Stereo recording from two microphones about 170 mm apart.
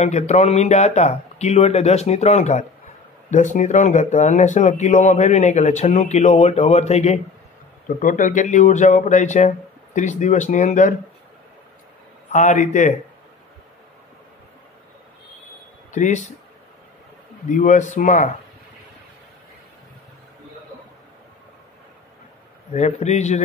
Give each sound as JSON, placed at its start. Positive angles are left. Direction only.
{"t": 0.0, "sound": "speech", "side_deg": 45}
{"t": 8.0, "sound": "speech", "side_deg": 50}
{"t": 12.3, "sound": "speech", "side_deg": 45}
{"t": 15.9, "sound": "speech", "side_deg": 45}
{"t": 17.5, "sound": "speech", "side_deg": 45}
{"t": 22.7, "sound": "speech", "side_deg": 40}